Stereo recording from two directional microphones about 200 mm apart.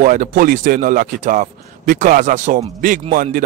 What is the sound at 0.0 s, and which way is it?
A man's voice, 40° right (ahead or behind).